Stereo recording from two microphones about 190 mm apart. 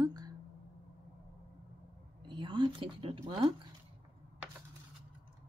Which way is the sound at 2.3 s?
25° right (ahead or behind).